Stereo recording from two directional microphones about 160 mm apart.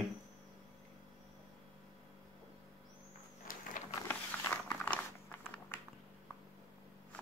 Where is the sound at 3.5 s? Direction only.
60° left (ahead or behind).